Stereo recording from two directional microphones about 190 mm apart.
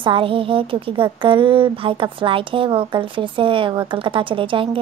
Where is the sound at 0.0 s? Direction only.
25° right (ahead or behind).